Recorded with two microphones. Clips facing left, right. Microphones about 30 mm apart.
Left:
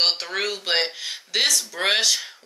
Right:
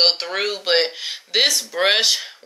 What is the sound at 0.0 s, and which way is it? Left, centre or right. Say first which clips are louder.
Speech: right 4 dB; centre.